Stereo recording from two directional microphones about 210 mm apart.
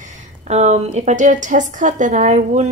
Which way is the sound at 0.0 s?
35° right (ahead or behind).